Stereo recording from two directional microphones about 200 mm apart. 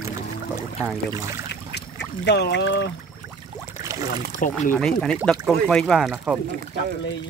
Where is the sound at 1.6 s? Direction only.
60° left (ahead or behind).